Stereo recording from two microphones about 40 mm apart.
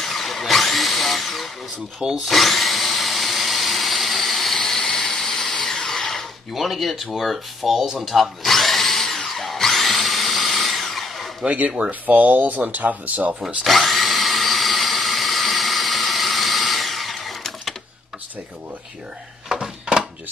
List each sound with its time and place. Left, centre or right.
0.0 s drill: centre
2.2 s tools: centre
6.5 s speech: centre
8.0 s drill: centre
11.9 s speech: right
13.7 s drill: centre
19.5 s a sound: right